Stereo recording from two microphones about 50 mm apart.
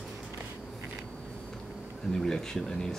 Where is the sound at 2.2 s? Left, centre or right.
Centre.